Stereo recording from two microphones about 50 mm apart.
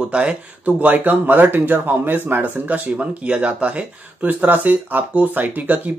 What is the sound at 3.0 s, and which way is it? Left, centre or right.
Speech, right.